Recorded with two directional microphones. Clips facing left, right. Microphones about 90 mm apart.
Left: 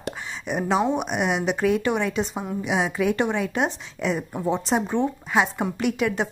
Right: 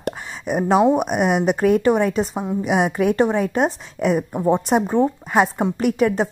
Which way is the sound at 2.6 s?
50° right (ahead or behind).